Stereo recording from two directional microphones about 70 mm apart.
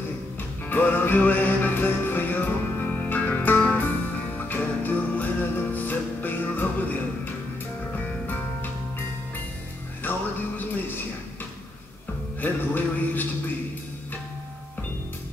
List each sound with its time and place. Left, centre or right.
0.7 s music: left
10.6 s a sound: left
12.4 s music: left